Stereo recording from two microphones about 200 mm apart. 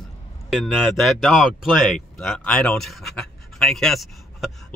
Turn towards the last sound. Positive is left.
turn(degrees=0)  # may be behind; listen again after turning